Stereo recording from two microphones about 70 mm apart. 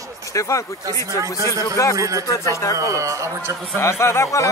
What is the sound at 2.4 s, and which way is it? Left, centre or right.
Speech, left.